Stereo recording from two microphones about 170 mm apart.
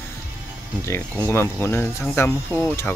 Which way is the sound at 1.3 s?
15° left (ahead or behind).